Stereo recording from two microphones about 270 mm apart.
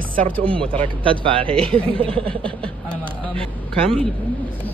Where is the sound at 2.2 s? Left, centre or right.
Centre.